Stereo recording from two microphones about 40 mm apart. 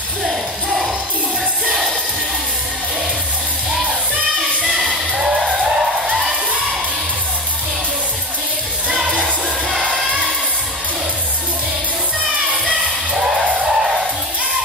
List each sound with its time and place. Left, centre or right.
0.2 s music: centre
4.6 s music: centre
9.7 s music: right
13.1 s music: centre